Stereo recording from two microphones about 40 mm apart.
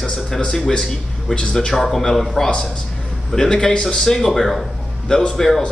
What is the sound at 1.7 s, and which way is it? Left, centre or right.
Speech, centre.